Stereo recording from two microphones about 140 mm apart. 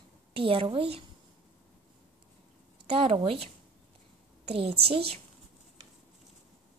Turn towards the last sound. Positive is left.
turn(degrees=-45)  # may be behind; listen again after turning